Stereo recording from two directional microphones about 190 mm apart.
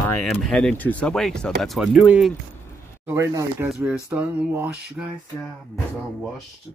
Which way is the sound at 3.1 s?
10° right (ahead or behind).